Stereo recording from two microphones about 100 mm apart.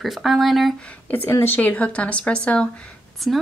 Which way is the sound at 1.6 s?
15° left (ahead or behind).